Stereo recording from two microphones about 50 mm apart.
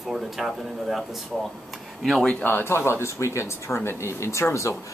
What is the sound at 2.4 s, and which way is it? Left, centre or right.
Speech, left.